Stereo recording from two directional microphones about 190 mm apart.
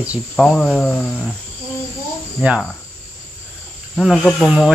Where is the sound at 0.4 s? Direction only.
Centre (ahead or behind).